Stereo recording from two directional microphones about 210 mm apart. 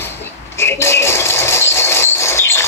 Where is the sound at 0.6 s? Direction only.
10° left (ahead or behind).